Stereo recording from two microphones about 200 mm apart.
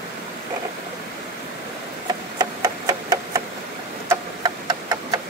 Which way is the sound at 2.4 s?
20° right (ahead or behind).